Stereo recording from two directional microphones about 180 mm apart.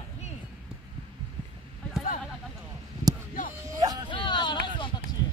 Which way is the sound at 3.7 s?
20° right (ahead or behind).